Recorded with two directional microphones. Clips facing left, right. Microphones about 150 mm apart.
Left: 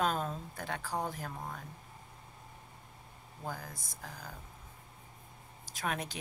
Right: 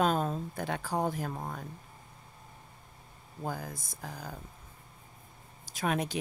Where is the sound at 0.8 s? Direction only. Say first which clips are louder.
Right 5 dB; 35° right (ahead or behind).